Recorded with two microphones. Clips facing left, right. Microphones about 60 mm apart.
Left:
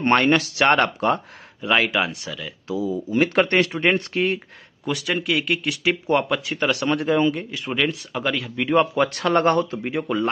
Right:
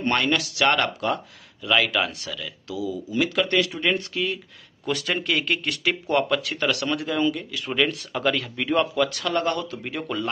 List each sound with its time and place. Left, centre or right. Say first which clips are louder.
0.0 s speech: left 5 dB; left
4.8 s speech: left 2 dB; centre; by 7.7 s left
7.7 s speech: even; centre
8.9 s speech: left 4 dB; left
9.7 s speech: left 5 dB; centre